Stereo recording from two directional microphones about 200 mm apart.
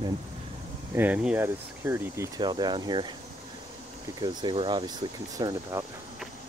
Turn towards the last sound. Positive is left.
turn(degrees=-20)  # may be behind; listen again after turning